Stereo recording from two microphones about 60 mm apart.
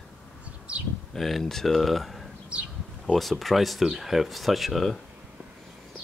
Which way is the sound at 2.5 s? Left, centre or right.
Centre.